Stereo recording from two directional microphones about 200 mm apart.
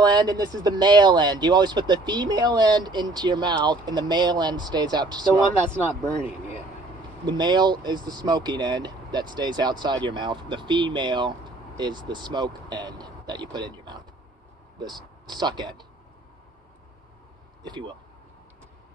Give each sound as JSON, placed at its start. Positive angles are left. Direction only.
{"t": 0.0, "sound": "speech", "side_deg": -20}
{"t": 7.2, "sound": "speech", "side_deg": -20}
{"t": 15.2, "sound": "speech", "side_deg": -20}
{"t": 17.6, "sound": "speech", "side_deg": -25}